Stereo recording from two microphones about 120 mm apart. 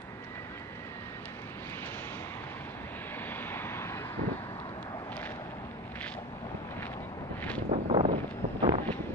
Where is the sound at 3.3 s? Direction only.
20° left (ahead or behind).